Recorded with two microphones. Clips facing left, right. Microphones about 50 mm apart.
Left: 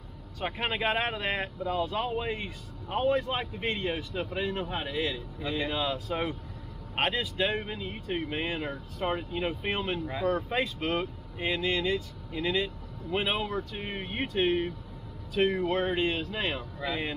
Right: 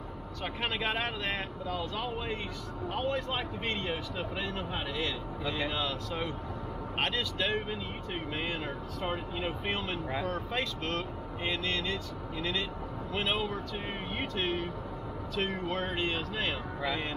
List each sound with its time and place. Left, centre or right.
0.4 s speech: centre